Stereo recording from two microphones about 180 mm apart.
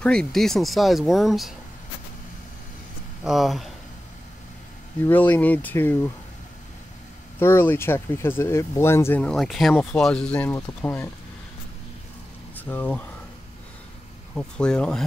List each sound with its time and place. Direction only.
0.0 s speech: 5° left (ahead or behind)
3.3 s speech: centre (ahead or behind)
5.0 s speech: 10° left (ahead or behind)
7.3 s speech: 15° left (ahead or behind)
12.5 s speech: 10° left (ahead or behind)
14.3 s speech: 5° left (ahead or behind)